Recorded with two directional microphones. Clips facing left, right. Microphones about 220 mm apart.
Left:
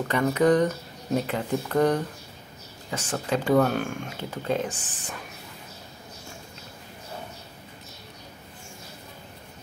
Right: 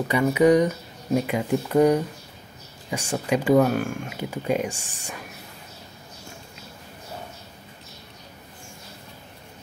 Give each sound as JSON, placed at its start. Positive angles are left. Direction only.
{"t": 0.1, "sound": "speech", "side_deg": -10}